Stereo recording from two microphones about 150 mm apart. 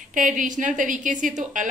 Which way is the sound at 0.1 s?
60° right (ahead or behind).